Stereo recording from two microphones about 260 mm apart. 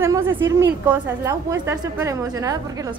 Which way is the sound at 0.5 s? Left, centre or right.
Centre.